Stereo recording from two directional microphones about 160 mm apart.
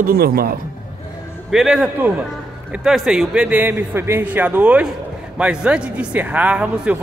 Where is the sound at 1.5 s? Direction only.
5° right (ahead or behind).